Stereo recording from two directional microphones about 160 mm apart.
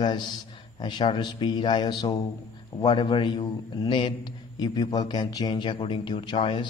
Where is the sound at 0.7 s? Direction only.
30° left (ahead or behind).